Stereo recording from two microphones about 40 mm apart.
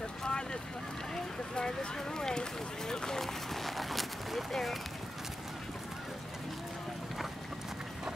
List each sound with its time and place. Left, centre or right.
0.2 s vehicle: centre
1.1 s speech: centre
2.9 s a sound: centre